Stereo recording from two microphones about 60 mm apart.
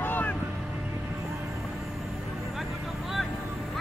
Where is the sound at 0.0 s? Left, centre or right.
Left.